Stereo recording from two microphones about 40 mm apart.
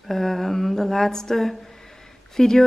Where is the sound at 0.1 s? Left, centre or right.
Centre.